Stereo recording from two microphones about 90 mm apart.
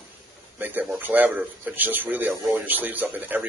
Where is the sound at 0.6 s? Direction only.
20° right (ahead or behind).